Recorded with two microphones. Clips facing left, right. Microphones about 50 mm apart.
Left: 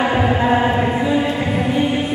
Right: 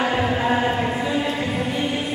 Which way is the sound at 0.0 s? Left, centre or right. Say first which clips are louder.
Left 4 dB; centre.